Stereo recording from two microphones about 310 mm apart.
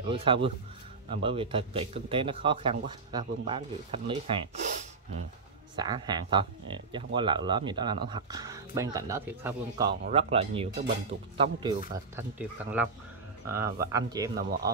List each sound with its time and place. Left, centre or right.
0.1 s speech: centre